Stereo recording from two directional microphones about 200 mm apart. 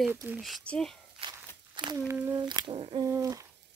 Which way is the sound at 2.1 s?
15° right (ahead or behind).